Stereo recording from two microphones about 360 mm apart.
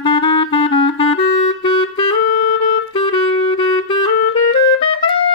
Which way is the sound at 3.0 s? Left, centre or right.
Centre.